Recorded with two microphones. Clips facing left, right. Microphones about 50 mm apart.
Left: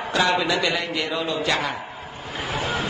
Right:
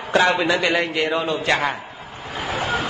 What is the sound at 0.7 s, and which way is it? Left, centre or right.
A man's voice, right.